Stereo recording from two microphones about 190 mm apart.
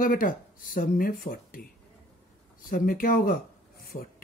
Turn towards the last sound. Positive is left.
turn(degrees=50)  # may be behind; listen again after turning